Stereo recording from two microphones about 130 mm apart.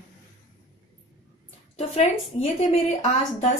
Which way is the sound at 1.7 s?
55° left (ahead or behind).